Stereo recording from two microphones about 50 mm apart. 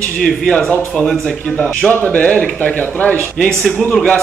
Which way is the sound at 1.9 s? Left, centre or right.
Left.